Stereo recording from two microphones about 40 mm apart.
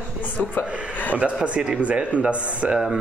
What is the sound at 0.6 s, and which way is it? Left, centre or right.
Speech, left.